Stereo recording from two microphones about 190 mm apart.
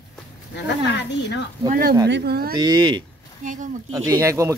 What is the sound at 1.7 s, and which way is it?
Speech, 50° right (ahead or behind).